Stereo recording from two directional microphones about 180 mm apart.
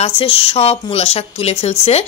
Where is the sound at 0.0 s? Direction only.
30° left (ahead or behind).